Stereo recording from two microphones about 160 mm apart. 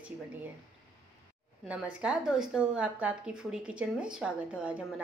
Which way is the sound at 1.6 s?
5° right (ahead or behind).